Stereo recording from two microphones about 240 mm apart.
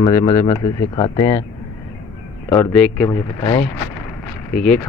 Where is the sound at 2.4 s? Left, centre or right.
Centre.